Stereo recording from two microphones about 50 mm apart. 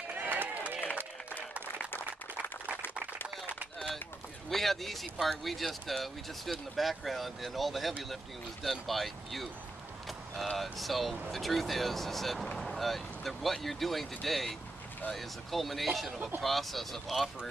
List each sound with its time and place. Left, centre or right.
0.1 s run: right
4.5 s speech: centre
10.0 s vehicle: centre
10.6 s speech: centre